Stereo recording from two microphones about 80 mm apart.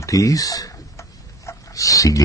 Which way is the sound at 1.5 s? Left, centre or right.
Left.